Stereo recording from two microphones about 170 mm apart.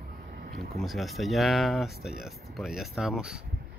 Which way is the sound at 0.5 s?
Centre (ahead or behind).